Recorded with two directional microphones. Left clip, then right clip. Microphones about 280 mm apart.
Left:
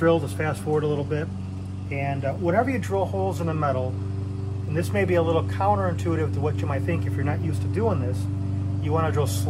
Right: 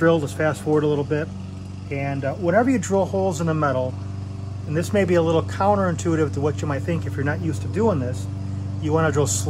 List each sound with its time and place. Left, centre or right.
0.0 s speech: right